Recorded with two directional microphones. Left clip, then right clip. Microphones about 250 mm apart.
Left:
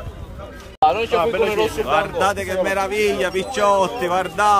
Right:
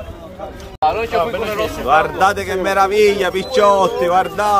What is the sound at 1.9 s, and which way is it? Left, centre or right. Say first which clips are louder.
A man's voice: right 8 dB; centre.